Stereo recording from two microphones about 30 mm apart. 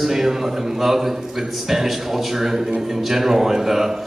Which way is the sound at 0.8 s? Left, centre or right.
Centre.